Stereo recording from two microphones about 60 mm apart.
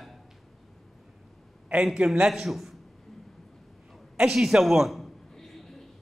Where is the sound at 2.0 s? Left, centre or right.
Centre.